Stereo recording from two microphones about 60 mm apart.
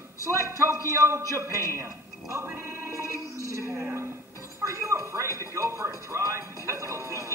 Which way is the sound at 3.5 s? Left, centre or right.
Right.